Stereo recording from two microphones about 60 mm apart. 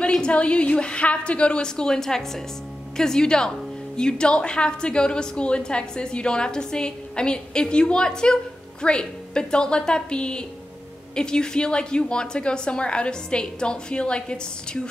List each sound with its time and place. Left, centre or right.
0.2 s a woman's voice: centre